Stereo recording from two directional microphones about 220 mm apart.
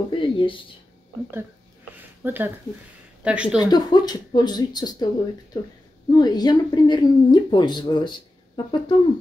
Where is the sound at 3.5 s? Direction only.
20° left (ahead or behind).